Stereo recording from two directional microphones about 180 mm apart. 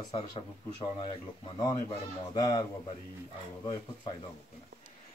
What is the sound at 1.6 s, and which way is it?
Speech, 20° left (ahead or behind).